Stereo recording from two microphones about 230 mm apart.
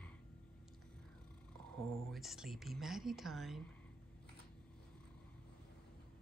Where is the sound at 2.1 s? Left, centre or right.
Centre.